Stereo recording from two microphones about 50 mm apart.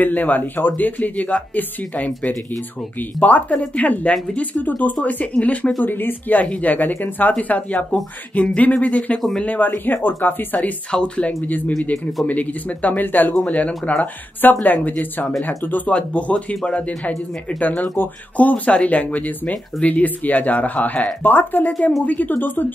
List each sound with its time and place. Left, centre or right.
0.0 s speech: left
5.9 s speech: left
9.6 s speech: left
10.9 s speech: left
13.3 s speech: left
14.4 s speech: left
15.9 s speech: left